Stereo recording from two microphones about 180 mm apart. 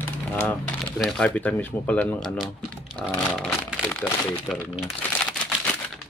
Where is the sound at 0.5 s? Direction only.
5° left (ahead or behind).